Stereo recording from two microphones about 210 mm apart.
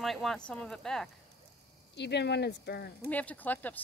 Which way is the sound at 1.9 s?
55° left (ahead or behind).